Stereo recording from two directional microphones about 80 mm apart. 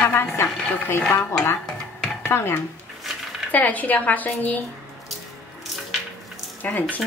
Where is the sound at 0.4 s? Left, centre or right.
Left.